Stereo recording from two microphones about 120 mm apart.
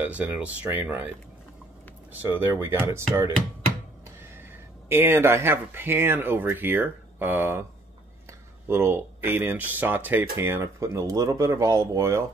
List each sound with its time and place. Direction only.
0.0 s speech: 15° right (ahead or behind)
2.2 s speech: 20° right (ahead or behind)
4.2 s speech: 20° right (ahead or behind)